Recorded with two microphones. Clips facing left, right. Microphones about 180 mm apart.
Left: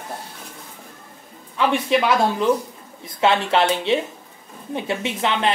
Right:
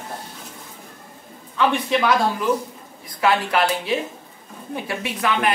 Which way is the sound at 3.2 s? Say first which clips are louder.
Left 1 dB; 25° left (ahead or behind).